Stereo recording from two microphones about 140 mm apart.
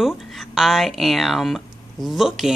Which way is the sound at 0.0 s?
Centre (ahead or behind).